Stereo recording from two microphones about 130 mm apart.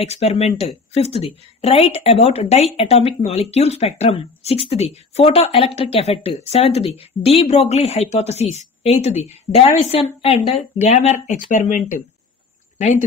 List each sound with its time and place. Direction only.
0.0 s speech: 55° left (ahead or behind)
11.2 s speech: 80° left
12.7 s speech: 60° left (ahead or behind)